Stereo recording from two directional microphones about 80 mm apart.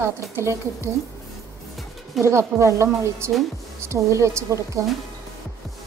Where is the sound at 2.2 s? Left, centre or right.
Right.